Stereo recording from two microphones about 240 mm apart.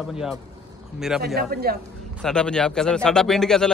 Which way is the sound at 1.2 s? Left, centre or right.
Right.